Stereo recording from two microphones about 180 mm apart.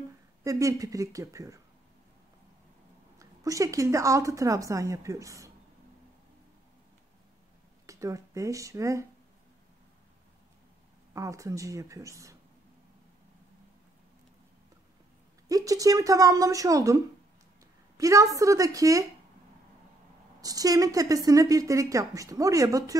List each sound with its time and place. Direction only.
0.4 s a woman's voice: 20° right (ahead or behind)
3.2 s a woman's voice: 20° right (ahead or behind)
7.8 s speech: 15° right (ahead or behind)
11.1 s a woman's voice: 15° right (ahead or behind)
15.4 s a woman's voice: 20° right (ahead or behind)
20.3 s a woman's voice: 20° right (ahead or behind)